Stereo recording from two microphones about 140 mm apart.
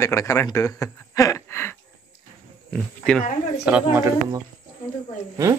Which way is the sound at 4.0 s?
20° right (ahead or behind).